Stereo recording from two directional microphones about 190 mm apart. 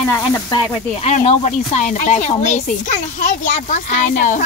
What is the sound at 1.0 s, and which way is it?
Speech, 35° left (ahead or behind).